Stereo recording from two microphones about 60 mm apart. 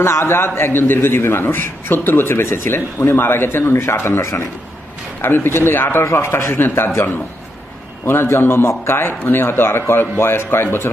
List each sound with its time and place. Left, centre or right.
0.0 s a man's voice: left
8.0 s a man's voice: left